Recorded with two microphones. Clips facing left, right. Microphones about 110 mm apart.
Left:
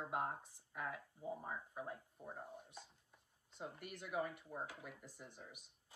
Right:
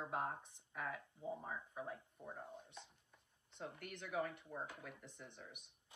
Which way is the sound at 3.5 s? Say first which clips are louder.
Even; 10° left (ahead or behind).